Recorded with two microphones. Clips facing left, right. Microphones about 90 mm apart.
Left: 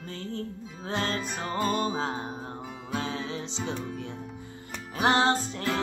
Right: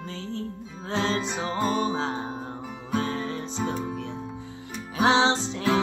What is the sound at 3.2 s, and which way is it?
Music, 55° right (ahead or behind).